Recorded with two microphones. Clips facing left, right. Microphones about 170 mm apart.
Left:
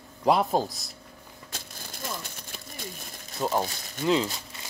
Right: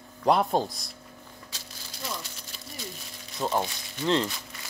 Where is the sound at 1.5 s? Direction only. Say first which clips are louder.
Left 3 dB; 50° left (ahead or behind).